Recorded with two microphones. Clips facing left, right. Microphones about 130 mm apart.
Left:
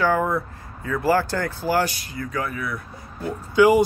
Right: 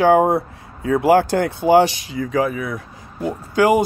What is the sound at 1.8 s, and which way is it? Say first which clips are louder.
Speech: right 7 dB; 90° right.